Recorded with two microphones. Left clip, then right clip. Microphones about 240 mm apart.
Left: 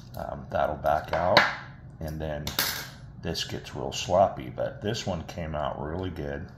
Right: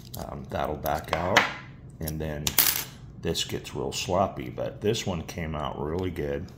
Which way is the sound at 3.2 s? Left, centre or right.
Right.